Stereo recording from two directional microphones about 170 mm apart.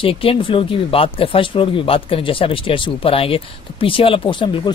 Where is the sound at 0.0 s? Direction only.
35° left (ahead or behind).